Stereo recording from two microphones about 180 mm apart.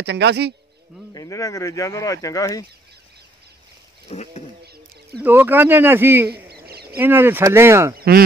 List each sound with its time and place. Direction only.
0.0 s a man's voice: 70° right (ahead or behind)
1.1 s speech: 20° left (ahead or behind)
4.1 s speech: 35° left (ahead or behind)
5.2 s speech: 10° right (ahead or behind)
6.3 s a sound: 60° right (ahead or behind)
7.0 s speech: 10° right (ahead or behind)